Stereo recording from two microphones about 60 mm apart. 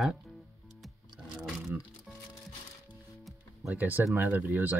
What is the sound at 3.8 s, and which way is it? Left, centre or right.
Speech, right.